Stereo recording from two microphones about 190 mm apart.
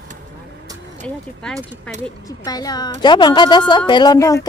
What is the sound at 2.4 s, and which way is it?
Speech, 20° left (ahead or behind).